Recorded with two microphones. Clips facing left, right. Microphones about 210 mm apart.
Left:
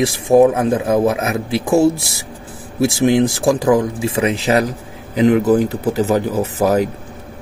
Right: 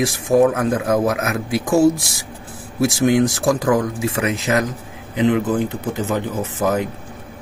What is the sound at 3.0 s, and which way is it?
Speech, 30° left (ahead or behind).